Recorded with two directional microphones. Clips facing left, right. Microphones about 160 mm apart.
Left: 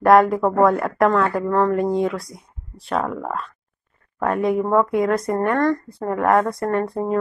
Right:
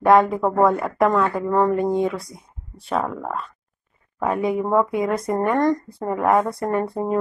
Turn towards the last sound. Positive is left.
turn(degrees=-5)  # may be behind; listen again after turning